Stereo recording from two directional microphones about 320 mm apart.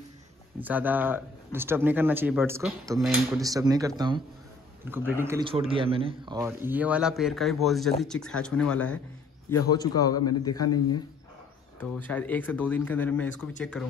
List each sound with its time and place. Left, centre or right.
0.6 s speech: centre
3.4 s a man's voice: centre
11.8 s speech: centre